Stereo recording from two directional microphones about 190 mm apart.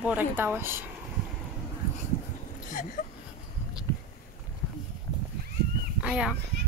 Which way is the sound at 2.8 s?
45° left (ahead or behind).